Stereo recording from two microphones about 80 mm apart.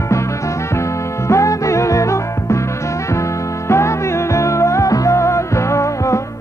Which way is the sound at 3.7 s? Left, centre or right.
Left.